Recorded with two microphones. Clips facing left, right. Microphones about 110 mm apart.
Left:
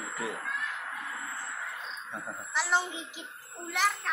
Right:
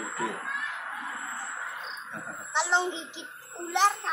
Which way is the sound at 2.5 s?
25° right (ahead or behind).